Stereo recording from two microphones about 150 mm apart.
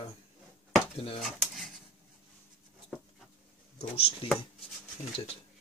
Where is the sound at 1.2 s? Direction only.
Centre (ahead or behind).